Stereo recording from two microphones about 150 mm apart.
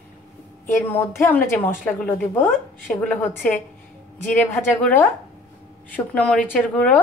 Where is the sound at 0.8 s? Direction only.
15° left (ahead or behind).